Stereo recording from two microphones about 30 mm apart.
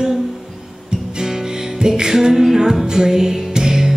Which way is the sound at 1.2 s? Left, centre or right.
Centre.